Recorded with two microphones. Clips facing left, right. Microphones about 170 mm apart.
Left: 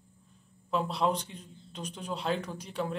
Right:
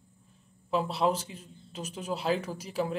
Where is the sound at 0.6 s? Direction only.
5° right (ahead or behind).